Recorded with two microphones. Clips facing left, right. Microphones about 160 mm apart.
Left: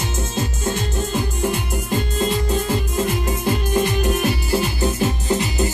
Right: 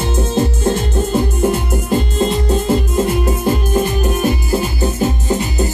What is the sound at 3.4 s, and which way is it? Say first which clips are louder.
Music: right 1 dB; 45° right (ahead or behind).